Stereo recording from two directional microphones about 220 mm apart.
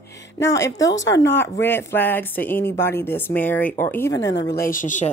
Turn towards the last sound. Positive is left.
turn(degrees=35)  # may be behind; listen again after turning